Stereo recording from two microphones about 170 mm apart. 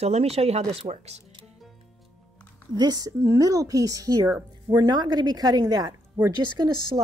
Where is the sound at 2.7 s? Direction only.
20° right (ahead or behind).